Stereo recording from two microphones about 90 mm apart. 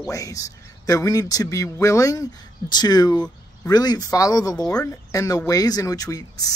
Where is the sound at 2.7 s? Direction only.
50° left (ahead or behind).